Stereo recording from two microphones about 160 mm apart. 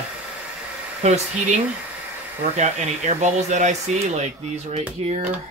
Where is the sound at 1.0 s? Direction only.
45° right (ahead or behind).